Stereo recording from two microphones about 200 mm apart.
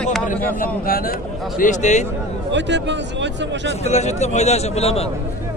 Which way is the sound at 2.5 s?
60° right (ahead or behind).